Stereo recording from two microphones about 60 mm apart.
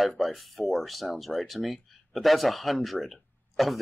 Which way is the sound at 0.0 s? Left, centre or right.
Centre.